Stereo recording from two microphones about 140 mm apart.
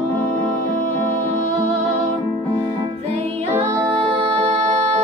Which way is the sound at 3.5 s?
20° right (ahead or behind).